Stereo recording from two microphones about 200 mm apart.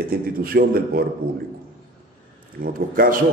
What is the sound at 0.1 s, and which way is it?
Speech, 50° right (ahead or behind).